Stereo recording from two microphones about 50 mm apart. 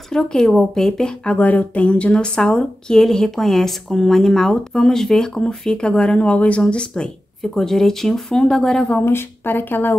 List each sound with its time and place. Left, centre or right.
0.1 s a woman's voice: centre
1.3 s a woman's voice: left; by 8.8 s centre
9.0 s speech: left